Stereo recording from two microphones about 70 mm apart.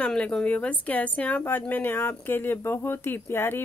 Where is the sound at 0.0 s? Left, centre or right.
Centre.